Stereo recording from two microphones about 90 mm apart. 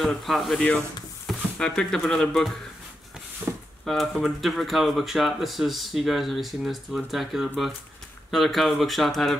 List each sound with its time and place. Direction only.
0.0 s speech: centre (ahead or behind)
3.5 s a sound: 25° right (ahead or behind)
3.8 s speech: 5° left (ahead or behind)